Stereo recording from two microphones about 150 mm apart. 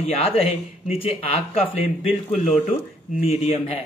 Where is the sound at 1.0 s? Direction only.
40° left (ahead or behind).